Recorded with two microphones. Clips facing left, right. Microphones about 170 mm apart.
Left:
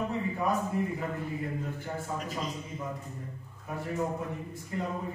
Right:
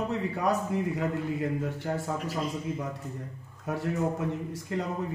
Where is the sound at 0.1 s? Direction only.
80° right.